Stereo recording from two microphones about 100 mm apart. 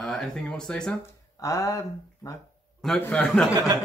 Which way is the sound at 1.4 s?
35° left (ahead or behind).